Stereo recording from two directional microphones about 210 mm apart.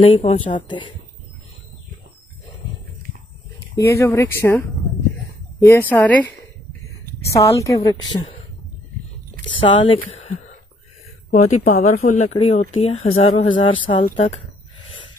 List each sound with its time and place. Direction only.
0.0 s speech: 30° left (ahead or behind)
3.7 s a woman's voice: 15° left (ahead or behind)
5.7 s a woman's voice: 10° left (ahead or behind)
7.3 s a woman's voice: 15° left (ahead or behind)
9.6 s speech: 25° left (ahead or behind)
11.5 s speech: 35° left (ahead or behind)
14.0 s a woman's voice: 35° left (ahead or behind)